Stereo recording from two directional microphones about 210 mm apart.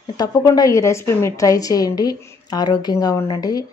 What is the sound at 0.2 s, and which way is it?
A woman's voice, 15° left (ahead or behind).